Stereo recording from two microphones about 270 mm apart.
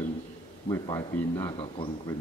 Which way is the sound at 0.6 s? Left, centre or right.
Centre.